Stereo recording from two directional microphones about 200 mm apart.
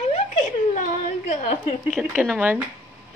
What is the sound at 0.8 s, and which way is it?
Speech, 35° left (ahead or behind).